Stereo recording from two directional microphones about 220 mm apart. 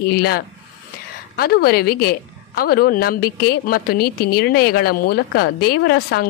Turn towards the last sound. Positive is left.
turn(degrees=45)  # may be behind; listen again after turning